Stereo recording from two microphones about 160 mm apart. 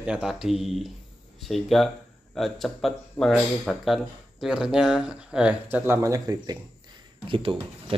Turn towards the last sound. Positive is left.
turn(degrees=-35)  # may be behind; listen again after turning